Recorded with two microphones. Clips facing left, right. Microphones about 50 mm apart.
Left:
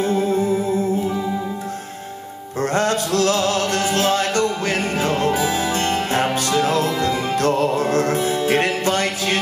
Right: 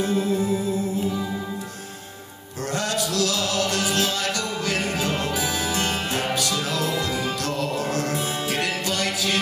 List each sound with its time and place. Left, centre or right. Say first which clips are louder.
0.0 s music: left 4 dB; left
2.6 s music: left 6 dB; left